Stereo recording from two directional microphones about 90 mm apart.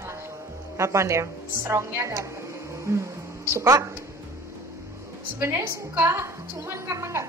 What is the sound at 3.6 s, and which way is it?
Speech, 40° right (ahead or behind).